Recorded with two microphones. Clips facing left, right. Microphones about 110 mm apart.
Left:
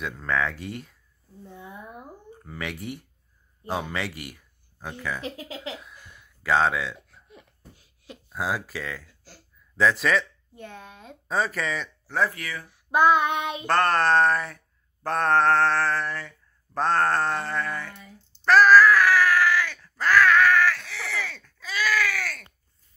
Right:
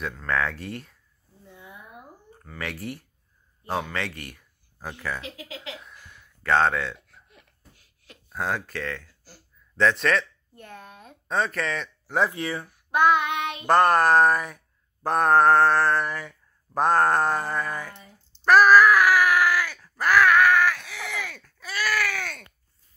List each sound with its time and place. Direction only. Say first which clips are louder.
0.0 s speech: even; 5° left (ahead or behind)
1.5 s a sound: left 4 dB; 35° left (ahead or behind)
2.6 s speech: even; centre (ahead or behind)
5.8 s a sound: even; centre (ahead or behind)
8.3 s speech: even; 5° left (ahead or behind)
12.1 s speech: right 2 dB; 20° right (ahead or behind)
13.7 s speech: right 3 dB; 10° right (ahead or behind)
18.4 s groan: even; 10° right (ahead or behind)